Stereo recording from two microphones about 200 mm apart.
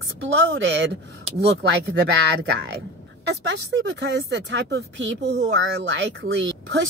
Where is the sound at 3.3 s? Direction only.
60° right (ahead or behind).